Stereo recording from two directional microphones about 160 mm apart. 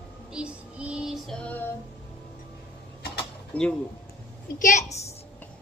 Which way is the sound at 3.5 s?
10° left (ahead or behind).